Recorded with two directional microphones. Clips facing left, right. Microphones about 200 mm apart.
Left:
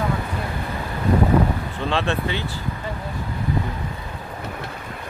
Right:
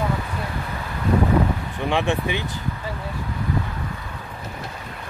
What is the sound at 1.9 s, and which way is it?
Speech, 15° right (ahead or behind).